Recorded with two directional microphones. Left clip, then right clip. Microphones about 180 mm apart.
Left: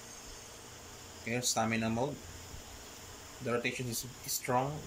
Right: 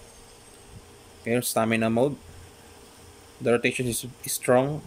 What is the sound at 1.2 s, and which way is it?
Speech, 50° right (ahead or behind).